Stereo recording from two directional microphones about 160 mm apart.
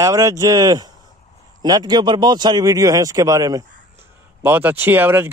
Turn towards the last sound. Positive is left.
turn(degrees=-15)  # may be behind; listen again after turning